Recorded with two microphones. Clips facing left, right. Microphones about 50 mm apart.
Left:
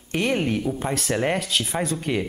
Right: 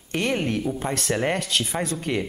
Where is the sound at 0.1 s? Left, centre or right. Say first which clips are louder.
Left 1 dB; centre.